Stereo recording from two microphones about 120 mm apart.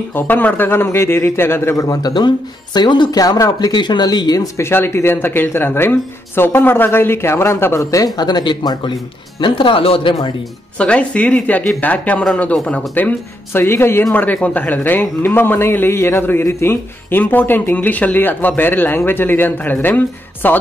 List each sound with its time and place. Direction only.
0.1 s a man's voice: 15° left (ahead or behind); by 10.1 s 50° left (ahead or behind)
10.8 s a man's voice: 10° left (ahead or behind)